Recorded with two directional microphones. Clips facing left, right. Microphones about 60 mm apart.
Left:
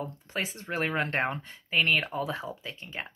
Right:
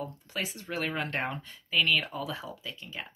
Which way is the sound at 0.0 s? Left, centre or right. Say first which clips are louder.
Left 2 dB; left.